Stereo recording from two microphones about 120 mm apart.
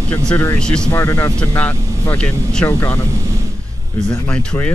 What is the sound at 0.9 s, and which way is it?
Speech, 20° left (ahead or behind).